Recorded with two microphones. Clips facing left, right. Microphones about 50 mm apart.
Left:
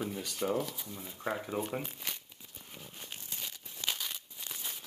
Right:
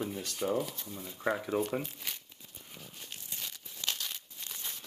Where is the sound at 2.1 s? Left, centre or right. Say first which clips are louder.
Left 1 dB; centre.